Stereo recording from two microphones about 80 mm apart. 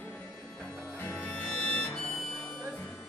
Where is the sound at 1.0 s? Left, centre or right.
Left.